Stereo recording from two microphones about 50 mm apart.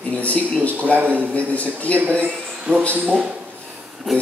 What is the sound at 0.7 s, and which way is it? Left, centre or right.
Speech, left.